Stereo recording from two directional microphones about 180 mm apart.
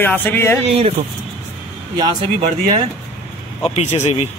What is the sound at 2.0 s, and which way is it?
Speech, 25° right (ahead or behind).